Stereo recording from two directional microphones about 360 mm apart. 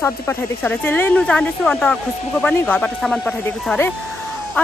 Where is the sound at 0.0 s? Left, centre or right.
Centre.